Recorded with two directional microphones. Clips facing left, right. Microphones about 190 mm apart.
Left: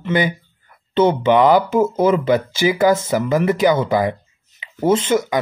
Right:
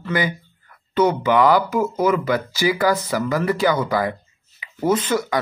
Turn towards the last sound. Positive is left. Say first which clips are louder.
# left 3 dB
turn(degrees=20)  # may be behind; listen again after turning